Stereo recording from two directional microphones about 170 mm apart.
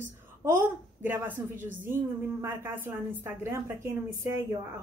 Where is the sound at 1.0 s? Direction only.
10° right (ahead or behind).